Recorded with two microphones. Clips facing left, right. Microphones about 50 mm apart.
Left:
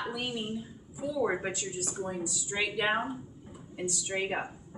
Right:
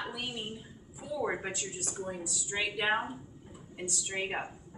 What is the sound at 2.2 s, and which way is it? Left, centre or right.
A woman's voice, centre.